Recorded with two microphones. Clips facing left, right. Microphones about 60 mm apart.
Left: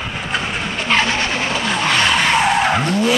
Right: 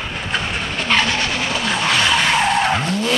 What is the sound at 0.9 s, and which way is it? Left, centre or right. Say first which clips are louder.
Vehicle: left 1 dB; centre.